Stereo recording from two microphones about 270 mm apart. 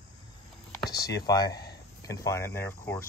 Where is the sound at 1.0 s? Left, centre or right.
Centre.